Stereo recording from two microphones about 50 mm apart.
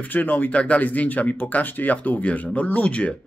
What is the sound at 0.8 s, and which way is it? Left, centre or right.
Speech, left.